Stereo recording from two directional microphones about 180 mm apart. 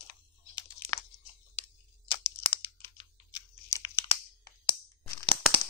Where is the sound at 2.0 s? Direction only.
30° left (ahead or behind).